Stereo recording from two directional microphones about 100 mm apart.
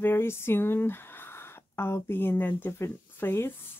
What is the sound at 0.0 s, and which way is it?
Speech, 25° left (ahead or behind).